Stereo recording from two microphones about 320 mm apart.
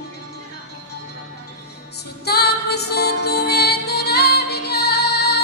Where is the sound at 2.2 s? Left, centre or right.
Left.